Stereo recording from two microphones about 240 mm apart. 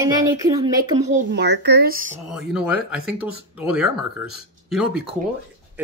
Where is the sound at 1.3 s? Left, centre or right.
Right.